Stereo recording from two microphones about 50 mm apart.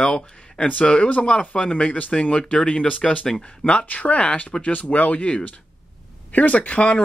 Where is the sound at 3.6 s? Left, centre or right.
Left.